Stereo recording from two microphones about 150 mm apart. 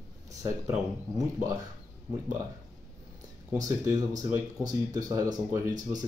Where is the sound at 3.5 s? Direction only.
20° right (ahead or behind).